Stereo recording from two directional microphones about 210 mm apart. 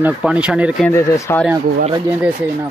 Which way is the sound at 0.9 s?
15° left (ahead or behind).